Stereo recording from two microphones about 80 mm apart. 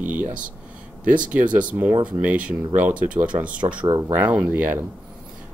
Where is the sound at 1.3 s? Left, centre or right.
Right.